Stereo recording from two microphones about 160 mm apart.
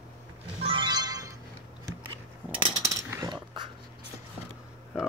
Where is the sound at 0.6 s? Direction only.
30° right (ahead or behind).